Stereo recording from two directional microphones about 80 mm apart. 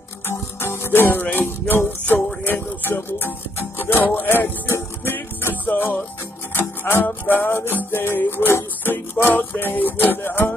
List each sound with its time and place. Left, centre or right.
0.3 s music: left